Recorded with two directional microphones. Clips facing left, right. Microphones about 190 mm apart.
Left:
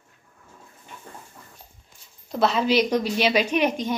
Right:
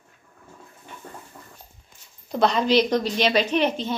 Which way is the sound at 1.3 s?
45° right (ahead or behind).